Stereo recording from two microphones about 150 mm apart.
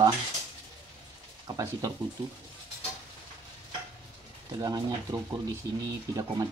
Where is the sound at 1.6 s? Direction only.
20° right (ahead or behind).